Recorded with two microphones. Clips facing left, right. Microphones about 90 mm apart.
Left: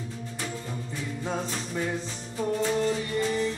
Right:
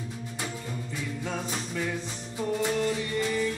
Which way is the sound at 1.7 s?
20° left (ahead or behind).